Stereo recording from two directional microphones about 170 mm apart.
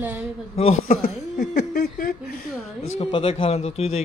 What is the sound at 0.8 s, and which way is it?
A man's voice, 60° left (ahead or behind).